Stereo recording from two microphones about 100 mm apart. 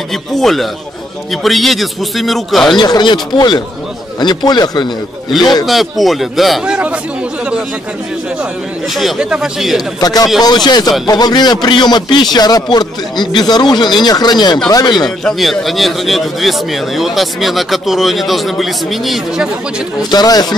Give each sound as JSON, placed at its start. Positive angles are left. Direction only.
{"t": 0.1, "sound": "a man's voice", "side_deg": 5}
{"t": 2.8, "sound": "a man's voice", "side_deg": 50}
{"t": 5.7, "sound": "a man's voice", "side_deg": 0}
{"t": 8.4, "sound": "a man's voice", "side_deg": 0}
{"t": 9.9, "sound": "a man's voice", "side_deg": 40}
{"t": 15.0, "sound": "a man's voice", "side_deg": 0}
{"t": 20.0, "sound": "speech", "side_deg": 40}